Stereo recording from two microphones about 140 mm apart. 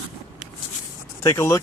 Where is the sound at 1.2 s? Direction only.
20° left (ahead or behind).